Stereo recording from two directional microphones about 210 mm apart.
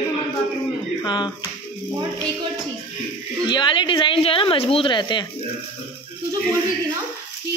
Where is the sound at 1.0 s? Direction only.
20° left (ahead or behind).